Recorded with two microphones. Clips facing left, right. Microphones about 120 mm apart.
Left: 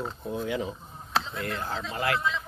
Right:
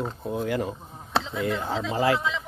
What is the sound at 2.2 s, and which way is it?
Speech, 90° right.